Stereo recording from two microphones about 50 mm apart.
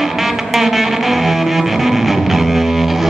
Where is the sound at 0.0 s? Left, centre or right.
Centre.